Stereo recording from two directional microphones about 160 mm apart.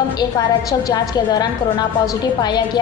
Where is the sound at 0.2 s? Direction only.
25° left (ahead or behind).